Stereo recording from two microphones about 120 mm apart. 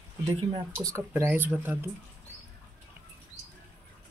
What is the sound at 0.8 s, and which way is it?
Speech, 25° right (ahead or behind).